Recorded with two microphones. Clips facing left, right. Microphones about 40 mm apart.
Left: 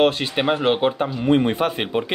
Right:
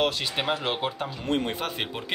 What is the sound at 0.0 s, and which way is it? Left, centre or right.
Speech, left.